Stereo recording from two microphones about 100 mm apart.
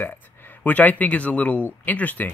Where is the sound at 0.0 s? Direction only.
20° left (ahead or behind).